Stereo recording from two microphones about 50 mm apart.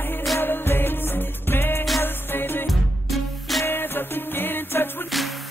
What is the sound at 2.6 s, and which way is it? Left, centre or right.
Music, centre.